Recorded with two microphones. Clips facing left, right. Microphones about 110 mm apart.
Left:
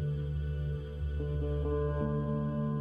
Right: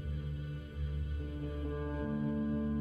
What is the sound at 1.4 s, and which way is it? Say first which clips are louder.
Music: left 7 dB; 30° left (ahead or behind).